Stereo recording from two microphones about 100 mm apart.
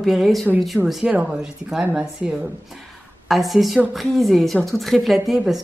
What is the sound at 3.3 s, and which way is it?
Speech, centre (ahead or behind).